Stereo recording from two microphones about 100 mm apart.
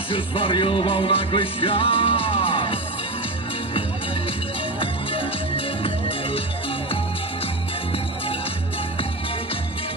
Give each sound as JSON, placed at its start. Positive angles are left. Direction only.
{"t": 0.1, "sound": "music", "side_deg": 60}
{"t": 5.9, "sound": "music", "side_deg": 65}